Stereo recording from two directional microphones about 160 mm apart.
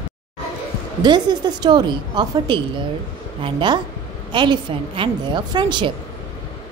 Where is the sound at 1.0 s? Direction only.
25° right (ahead or behind).